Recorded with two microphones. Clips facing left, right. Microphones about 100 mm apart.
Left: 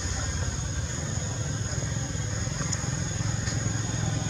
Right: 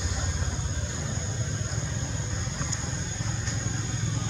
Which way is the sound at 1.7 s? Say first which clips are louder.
Left 1 dB; centre (ahead or behind).